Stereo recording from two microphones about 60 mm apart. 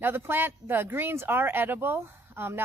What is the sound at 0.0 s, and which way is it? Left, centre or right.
Speech, right.